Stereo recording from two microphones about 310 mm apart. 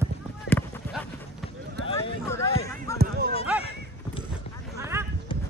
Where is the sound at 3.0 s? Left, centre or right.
Right.